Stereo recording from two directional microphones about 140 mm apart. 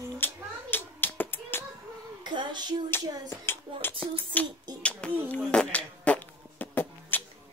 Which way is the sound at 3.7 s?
35° right (ahead or behind).